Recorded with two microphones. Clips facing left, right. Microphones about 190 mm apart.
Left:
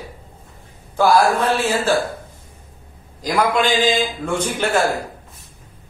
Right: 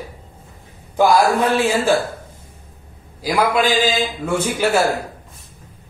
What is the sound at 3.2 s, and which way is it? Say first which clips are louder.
A man's voice: right 1 dB; 10° right (ahead or behind).